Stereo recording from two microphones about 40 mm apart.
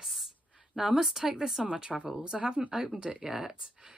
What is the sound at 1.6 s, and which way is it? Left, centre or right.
A woman's voice, right.